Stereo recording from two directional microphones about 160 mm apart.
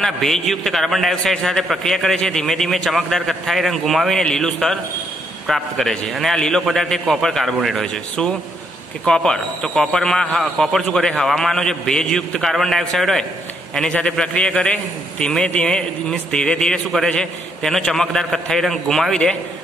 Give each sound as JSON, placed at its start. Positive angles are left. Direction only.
{"t": 0.0, "sound": "a man's voice", "side_deg": 0}